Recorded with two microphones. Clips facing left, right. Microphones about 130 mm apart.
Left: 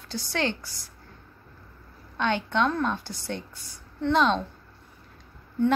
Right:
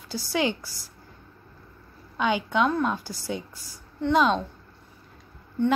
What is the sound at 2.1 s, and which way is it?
A woman's voice, 5° right (ahead or behind).